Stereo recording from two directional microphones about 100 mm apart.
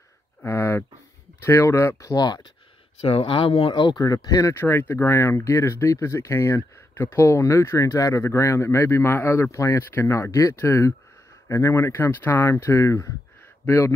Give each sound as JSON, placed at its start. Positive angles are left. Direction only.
{"t": 0.4, "sound": "a sound", "side_deg": 25}
{"t": 1.4, "sound": "speech", "side_deg": 25}
{"t": 3.0, "sound": "speech", "side_deg": 65}
{"t": 3.7, "sound": "speech", "side_deg": 45}
{"t": 4.6, "sound": "speech", "side_deg": 20}